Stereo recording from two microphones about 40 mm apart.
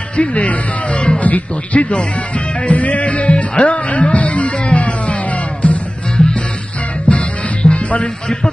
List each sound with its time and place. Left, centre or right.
0.1 s speech: left
2.0 s music: left